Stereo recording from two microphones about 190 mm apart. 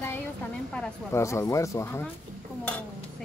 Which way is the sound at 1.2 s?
15° left (ahead or behind).